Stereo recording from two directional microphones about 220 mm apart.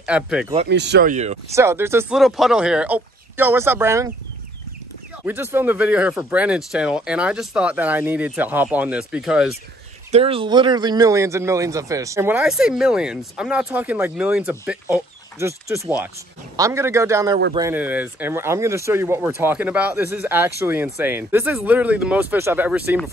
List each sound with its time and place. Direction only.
0.0 s speech: 5° right (ahead or behind)
0.7 s speech: 50° right (ahead or behind)
1.1 s speech: 30° right (ahead or behind)
1.5 s speech: 10° right (ahead or behind)
5.2 s speech: 10° right (ahead or behind)
10.1 s speech: 25° right (ahead or behind); by 22.9 s 10° right (ahead or behind)